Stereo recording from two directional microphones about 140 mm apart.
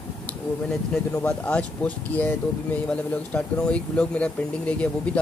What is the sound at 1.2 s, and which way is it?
Speech, 10° left (ahead or behind).